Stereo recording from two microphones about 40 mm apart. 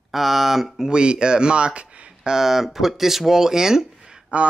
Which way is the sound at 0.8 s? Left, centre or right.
Right.